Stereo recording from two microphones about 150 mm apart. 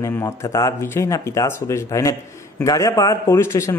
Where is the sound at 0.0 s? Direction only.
20° left (ahead or behind).